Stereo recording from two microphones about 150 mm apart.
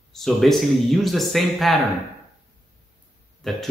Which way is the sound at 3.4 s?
Centre (ahead or behind).